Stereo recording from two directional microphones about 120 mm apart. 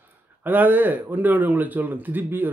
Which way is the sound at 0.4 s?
15° right (ahead or behind).